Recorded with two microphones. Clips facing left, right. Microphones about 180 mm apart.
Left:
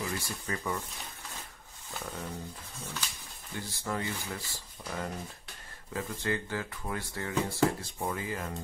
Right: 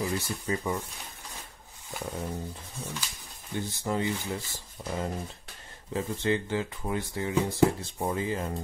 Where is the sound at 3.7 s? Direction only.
20° right (ahead or behind).